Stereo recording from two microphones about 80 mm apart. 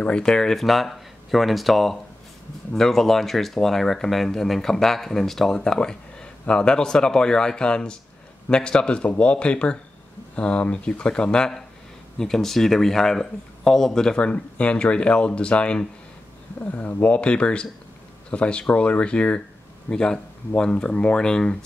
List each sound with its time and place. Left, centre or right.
0.0 s speech: centre